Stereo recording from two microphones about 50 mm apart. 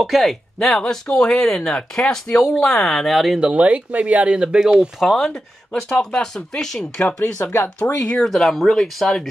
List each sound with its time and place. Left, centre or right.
0.0 s speech: centre
3.1 s speech: centre
3.3 s speech: right
5.0 s speech: centre
7.4 s speech: left
7.8 s speech: left
8.2 s speech: centre